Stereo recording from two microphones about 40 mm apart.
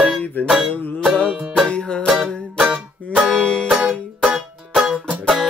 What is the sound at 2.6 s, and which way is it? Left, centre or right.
Music, centre.